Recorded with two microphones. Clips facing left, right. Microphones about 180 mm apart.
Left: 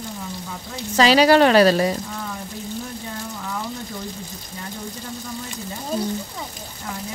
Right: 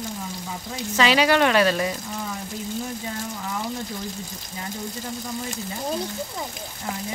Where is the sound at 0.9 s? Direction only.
35° left (ahead or behind).